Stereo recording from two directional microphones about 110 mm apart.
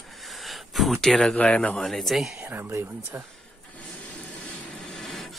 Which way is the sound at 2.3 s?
15° right (ahead or behind).